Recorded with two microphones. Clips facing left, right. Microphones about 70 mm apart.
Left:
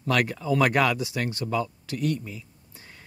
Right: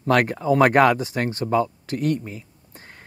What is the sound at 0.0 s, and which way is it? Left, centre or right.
Speech, right.